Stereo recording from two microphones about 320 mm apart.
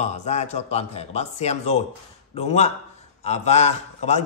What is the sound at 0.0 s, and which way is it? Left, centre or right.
Speech, left.